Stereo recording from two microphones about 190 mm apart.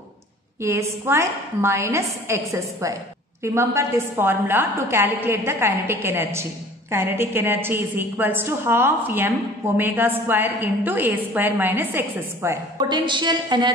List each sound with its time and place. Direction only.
0.6 s a woman's voice: 15° right (ahead or behind)
12.7 s a woman's voice: 25° right (ahead or behind)